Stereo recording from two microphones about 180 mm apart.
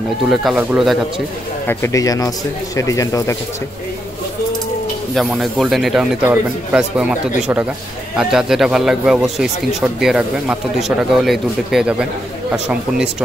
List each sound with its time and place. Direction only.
0.3 s speech: centre (ahead or behind)
1.7 s speech: 15° left (ahead or behind)
5.1 s speech: centre (ahead or behind)